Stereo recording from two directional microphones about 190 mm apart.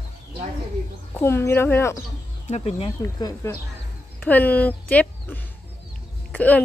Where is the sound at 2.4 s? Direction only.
35° left (ahead or behind).